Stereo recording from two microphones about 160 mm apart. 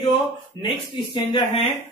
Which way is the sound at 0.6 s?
30° left (ahead or behind).